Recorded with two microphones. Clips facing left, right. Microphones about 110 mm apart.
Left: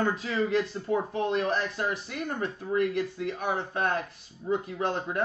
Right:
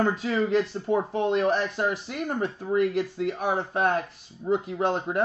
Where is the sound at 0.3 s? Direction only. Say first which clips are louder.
Right 3 dB; 30° right (ahead or behind).